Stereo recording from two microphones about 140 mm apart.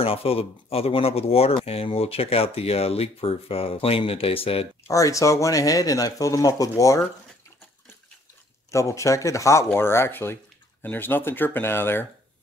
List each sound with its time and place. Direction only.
0.0 s speech: 45° left (ahead or behind)
4.8 s speech: 25° left (ahead or behind)
8.7 s speech: 20° left (ahead or behind)